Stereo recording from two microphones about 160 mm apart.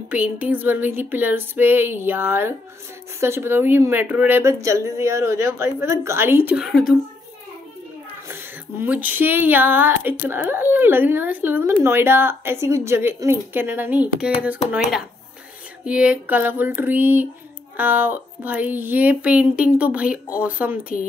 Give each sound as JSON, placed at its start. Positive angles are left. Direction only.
{"t": 0.1, "sound": "speech", "side_deg": -10}
{"t": 8.3, "sound": "speech", "side_deg": -10}